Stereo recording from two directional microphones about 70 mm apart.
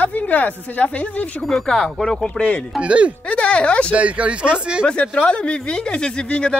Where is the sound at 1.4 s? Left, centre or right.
Centre.